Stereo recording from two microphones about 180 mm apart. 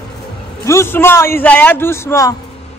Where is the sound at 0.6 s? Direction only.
15° left (ahead or behind).